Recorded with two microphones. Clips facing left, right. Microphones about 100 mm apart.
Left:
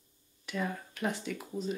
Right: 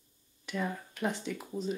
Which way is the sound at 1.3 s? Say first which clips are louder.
Right 1 dB; 15° right (ahead or behind).